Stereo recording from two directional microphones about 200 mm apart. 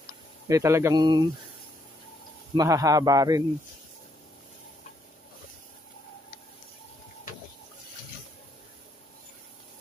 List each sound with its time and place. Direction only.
0.5 s speech: 15° right (ahead or behind)
2.5 s speech: 15° right (ahead or behind)